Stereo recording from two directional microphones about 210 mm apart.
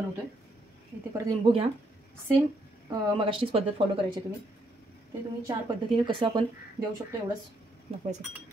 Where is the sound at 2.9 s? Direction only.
25° right (ahead or behind).